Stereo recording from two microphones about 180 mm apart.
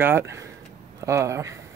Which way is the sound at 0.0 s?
15° right (ahead or behind).